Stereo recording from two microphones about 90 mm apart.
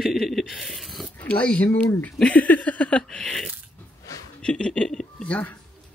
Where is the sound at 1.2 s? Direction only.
15° left (ahead or behind).